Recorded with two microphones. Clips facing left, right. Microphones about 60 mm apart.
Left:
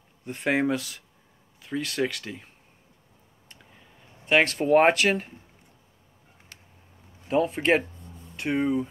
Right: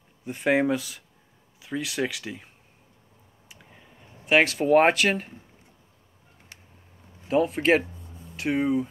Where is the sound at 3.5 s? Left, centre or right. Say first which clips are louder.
Right 2 dB; centre.